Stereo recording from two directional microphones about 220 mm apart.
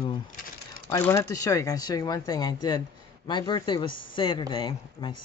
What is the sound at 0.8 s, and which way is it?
Speech, 10° left (ahead or behind).